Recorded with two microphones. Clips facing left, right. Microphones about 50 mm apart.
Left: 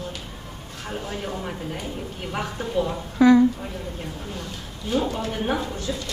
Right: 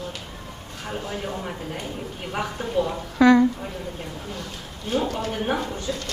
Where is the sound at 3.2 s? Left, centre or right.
Right.